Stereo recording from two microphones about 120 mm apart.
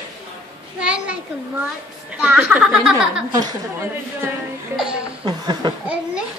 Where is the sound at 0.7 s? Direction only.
10° right (ahead or behind).